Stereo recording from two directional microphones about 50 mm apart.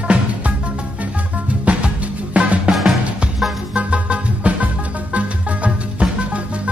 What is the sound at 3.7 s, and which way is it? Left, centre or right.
Music, right.